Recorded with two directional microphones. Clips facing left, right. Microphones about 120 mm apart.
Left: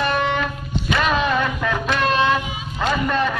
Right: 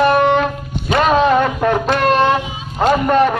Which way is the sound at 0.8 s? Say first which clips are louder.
Right 7 dB; 40° right (ahead or behind).